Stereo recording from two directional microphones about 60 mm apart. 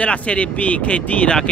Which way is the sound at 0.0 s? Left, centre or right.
Centre.